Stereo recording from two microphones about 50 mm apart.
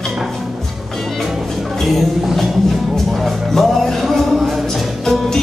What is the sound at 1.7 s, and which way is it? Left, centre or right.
Music, centre.